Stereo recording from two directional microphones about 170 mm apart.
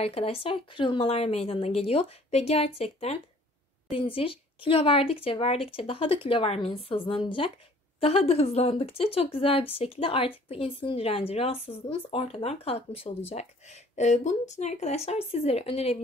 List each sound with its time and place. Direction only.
0.0 s speech: 35° left (ahead or behind)